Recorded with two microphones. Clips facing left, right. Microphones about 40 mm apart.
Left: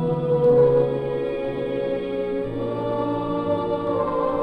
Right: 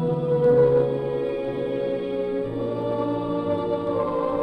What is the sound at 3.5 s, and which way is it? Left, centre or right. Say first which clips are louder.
Music: left 2 dB; left.